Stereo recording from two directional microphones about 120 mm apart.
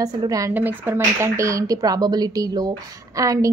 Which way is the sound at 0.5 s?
15° right (ahead or behind).